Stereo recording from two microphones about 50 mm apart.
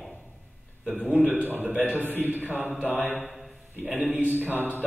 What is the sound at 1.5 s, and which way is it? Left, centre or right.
Speech, right.